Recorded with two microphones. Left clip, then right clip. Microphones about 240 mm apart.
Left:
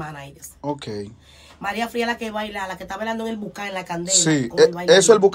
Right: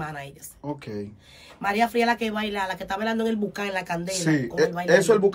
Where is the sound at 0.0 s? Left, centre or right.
Centre.